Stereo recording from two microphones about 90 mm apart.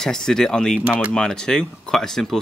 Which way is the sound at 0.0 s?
5° left (ahead or behind).